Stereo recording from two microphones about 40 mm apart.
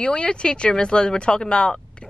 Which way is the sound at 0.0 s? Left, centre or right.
Left.